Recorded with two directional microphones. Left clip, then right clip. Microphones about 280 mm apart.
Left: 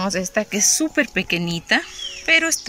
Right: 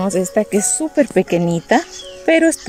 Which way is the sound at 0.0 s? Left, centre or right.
Centre.